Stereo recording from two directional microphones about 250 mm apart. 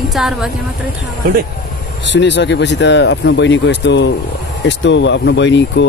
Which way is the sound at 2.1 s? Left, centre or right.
Left.